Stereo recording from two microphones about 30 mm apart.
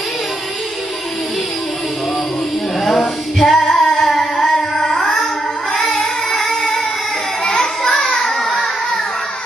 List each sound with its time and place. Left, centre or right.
2.8 s a sound: centre
3.5 s carnatic music: centre
5.9 s music: centre
8.0 s child singing: left